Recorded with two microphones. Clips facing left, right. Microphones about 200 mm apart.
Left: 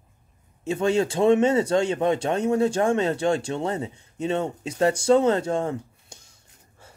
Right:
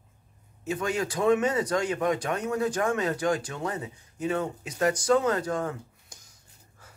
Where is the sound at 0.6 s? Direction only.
25° left (ahead or behind).